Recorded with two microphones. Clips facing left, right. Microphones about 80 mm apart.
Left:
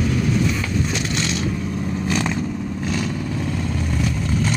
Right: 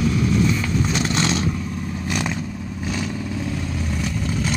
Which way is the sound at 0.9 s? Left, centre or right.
Right.